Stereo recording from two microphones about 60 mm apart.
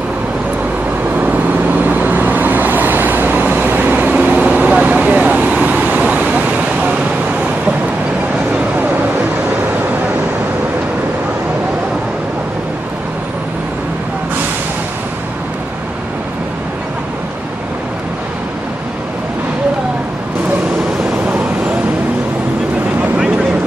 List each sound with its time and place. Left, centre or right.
1.9 s vehicle: right